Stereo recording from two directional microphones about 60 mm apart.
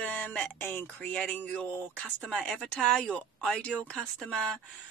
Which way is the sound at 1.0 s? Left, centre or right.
Left.